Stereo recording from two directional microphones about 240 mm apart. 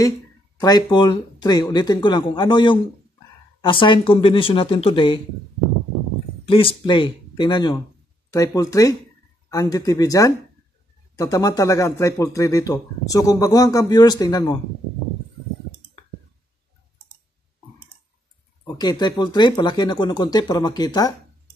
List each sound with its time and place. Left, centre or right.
0.6 s speech: centre
6.4 s speech: left
18.8 s speech: centre